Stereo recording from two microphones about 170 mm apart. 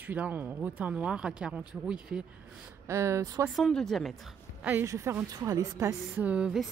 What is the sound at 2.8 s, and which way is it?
Speech, 15° right (ahead or behind).